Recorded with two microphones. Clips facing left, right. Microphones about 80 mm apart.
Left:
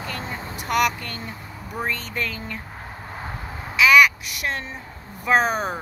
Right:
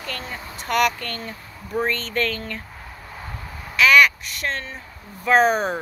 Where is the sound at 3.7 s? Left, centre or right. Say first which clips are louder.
Even; centre.